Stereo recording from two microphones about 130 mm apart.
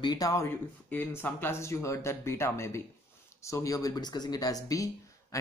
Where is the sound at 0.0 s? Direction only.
30° left (ahead or behind).